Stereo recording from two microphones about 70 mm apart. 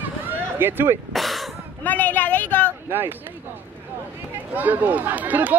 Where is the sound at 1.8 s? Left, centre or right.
Left.